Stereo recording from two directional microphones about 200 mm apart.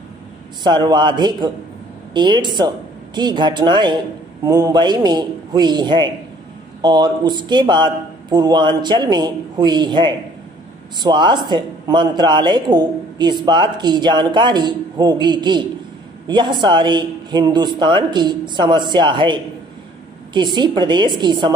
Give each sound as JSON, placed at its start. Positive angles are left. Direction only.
{"t": 0.7, "sound": "speech", "side_deg": -20}